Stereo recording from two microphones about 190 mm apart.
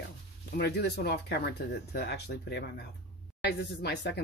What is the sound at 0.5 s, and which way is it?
Speech, 60° left (ahead or behind).